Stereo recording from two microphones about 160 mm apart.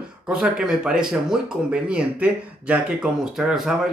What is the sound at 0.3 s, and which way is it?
A man's voice, 5° right (ahead or behind).